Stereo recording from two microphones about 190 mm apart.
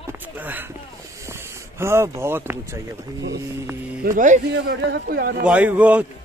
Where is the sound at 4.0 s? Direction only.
45° right (ahead or behind).